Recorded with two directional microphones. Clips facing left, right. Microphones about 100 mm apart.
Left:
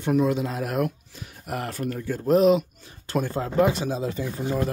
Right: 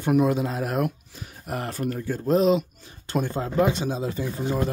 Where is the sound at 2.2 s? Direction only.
5° left (ahead or behind).